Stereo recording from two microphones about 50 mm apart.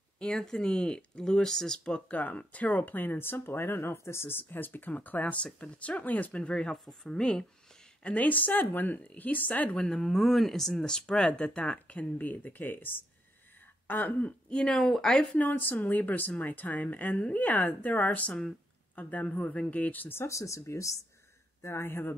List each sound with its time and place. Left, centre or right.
0.2 s speech: centre
2.1 s speech: left
3.9 s speech: left; by 7.4 s centre
8.0 s speech: left
9.8 s speech: centre; by 14.3 s left
14.5 s speech: centre
15.3 s speech: left
20.2 s speech: left
21.8 s speech: left